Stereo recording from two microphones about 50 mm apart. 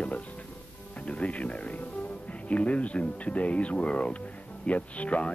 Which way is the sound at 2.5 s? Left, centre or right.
Left.